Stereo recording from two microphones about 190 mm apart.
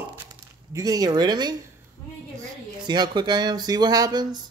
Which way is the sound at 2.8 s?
20° right (ahead or behind).